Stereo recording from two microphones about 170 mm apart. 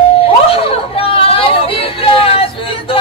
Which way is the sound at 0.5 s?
35° left (ahead or behind).